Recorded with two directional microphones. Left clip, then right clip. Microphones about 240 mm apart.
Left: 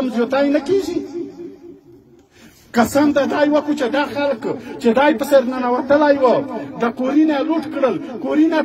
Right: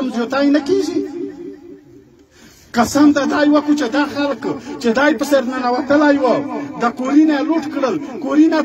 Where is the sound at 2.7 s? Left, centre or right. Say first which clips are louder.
Right 1 dB; left.